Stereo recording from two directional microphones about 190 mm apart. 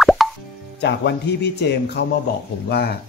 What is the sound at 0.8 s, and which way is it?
Speech, 60° left (ahead or behind).